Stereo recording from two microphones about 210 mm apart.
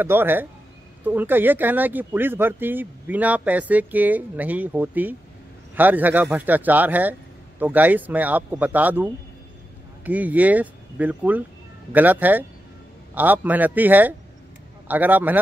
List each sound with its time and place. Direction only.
0.0 s speech: 10° right (ahead or behind)